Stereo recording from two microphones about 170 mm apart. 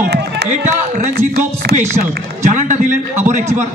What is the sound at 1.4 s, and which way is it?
Speech, 70° right (ahead or behind).